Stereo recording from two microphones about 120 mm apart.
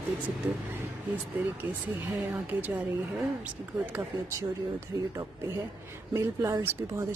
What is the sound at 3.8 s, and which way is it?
Speech, 15° right (ahead or behind).